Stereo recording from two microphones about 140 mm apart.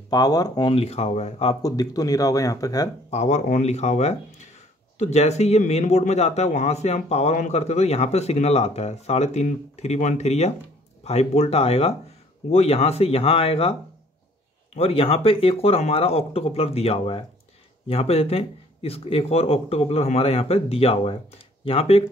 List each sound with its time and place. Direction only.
0.1 s speech: 25° left (ahead or behind); by 1.6 s 50° left (ahead or behind)
1.6 s speech: 25° left (ahead or behind)
3.1 s speech: 50° left (ahead or behind)
14.8 s speech: 45° left (ahead or behind)